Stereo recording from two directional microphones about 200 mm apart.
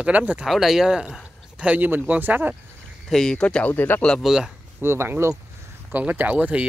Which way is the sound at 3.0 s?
5° left (ahead or behind).